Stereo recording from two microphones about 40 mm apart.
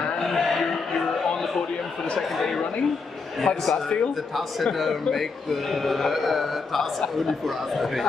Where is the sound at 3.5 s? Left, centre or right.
Left.